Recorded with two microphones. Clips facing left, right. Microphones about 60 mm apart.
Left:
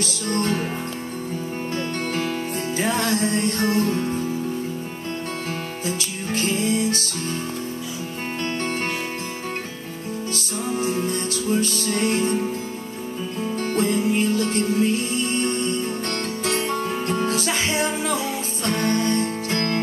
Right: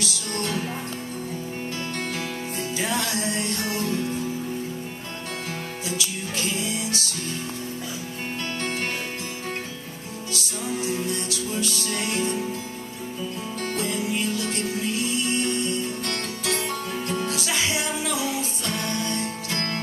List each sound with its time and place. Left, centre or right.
0.0 s music: left
2.8 s music: left
5.9 s music: left
10.3 s music: left
13.7 s music: left